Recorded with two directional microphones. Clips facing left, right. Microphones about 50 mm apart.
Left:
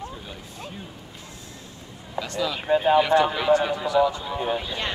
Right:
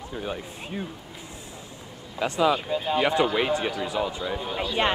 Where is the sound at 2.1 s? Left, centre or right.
Right.